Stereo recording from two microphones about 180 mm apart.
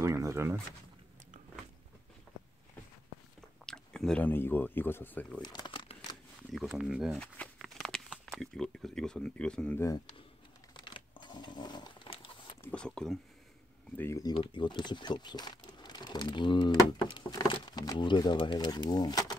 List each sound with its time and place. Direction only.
0.0 s a sound: 15° right (ahead or behind)
3.3 s speech: 5° left (ahead or behind)
5.4 s crumpling: 25° left (ahead or behind)
6.5 s a sound: centre (ahead or behind)
8.4 s speech: centre (ahead or behind)
10.7 s a sound: 25° left (ahead or behind)
12.6 s speech: 5° left (ahead or behind)
13.9 s speech: 15° left (ahead or behind)
14.3 s speech: 30° left (ahead or behind)